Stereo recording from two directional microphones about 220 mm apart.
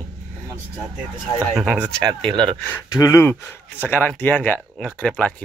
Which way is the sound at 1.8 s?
20° right (ahead or behind).